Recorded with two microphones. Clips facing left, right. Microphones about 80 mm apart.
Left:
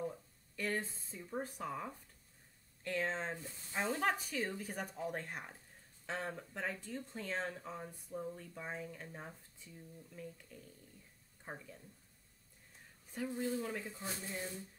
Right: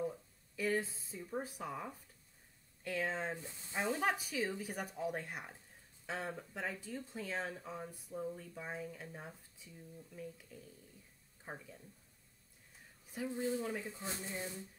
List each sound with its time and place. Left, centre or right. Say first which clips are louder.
0.0 s speech: right 2 dB; centre
13.3 s speech: right 1 dB; centre